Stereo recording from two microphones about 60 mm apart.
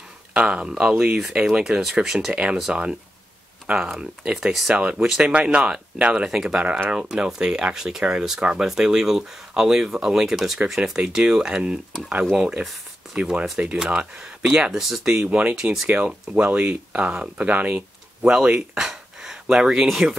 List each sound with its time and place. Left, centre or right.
0.3 s speech: centre
2.0 s speech: centre
15.1 s speech: right
15.5 s speech: centre
16.3 s speech: right
18.8 s a sound: centre